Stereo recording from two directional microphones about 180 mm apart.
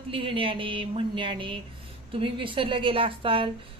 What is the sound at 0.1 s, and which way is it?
A woman's voice, 30° right (ahead or behind).